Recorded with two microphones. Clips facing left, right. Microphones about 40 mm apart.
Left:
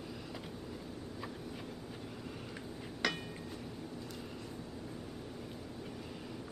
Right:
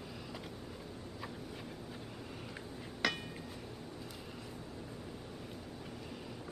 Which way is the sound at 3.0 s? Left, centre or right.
Centre.